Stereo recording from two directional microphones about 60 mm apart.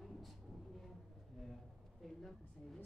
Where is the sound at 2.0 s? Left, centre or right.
Centre.